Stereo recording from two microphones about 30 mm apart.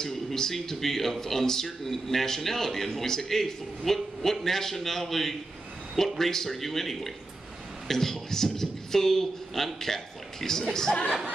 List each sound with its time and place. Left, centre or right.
0.0 s a man's voice: centre